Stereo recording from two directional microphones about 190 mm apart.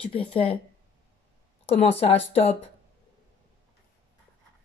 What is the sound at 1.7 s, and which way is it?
Speech, 35° left (ahead or behind).